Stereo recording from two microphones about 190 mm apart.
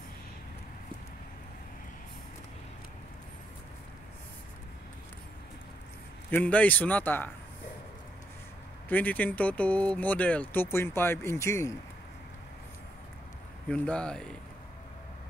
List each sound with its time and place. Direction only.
6.3 s speech: 10° left (ahead or behind)
8.8 s speech: 10° left (ahead or behind)
13.7 s speech: 5° left (ahead or behind)